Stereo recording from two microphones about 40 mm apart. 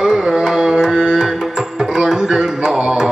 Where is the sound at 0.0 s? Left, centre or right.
Centre.